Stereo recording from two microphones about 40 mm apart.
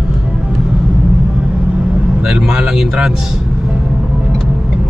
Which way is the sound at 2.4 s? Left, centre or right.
Centre.